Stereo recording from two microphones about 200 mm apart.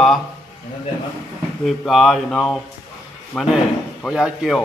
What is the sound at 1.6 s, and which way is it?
Speech, centre (ahead or behind).